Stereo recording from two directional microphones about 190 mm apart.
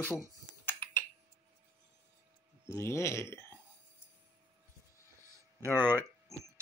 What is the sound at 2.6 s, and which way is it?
Speech, 15° left (ahead or behind).